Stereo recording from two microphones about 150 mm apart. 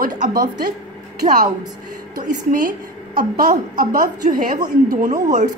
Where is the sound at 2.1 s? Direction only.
65° right (ahead or behind).